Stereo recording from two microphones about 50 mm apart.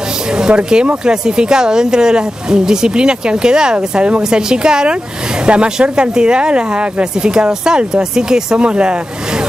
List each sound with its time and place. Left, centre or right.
0.4 s speech: centre